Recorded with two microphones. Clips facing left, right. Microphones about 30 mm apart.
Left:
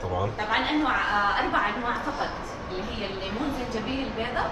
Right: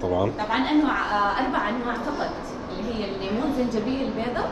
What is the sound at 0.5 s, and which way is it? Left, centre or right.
Speech, centre.